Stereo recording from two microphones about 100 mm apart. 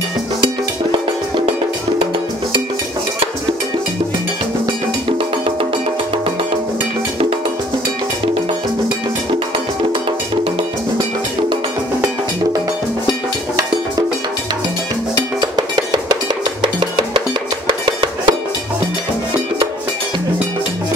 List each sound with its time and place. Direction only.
5.1 s cowbell: 60° right (ahead or behind)
15.4 s cowbell: 45° right (ahead or behind)
17.6 s music: 55° right (ahead or behind)